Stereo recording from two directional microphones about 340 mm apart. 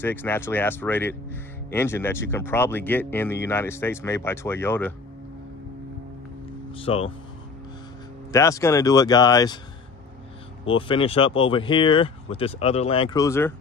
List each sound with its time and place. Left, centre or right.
0.0 s speech: centre
6.8 s speech: centre
8.3 s speech: centre
10.6 s speech: centre